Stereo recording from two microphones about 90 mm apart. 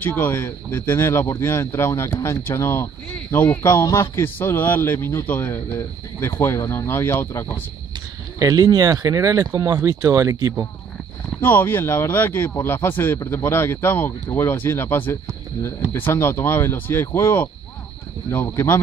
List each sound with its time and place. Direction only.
0.0 s speech: 25° left (ahead or behind)
8.4 s speech: 40° right (ahead or behind)
11.4 s speech: 25° left (ahead or behind)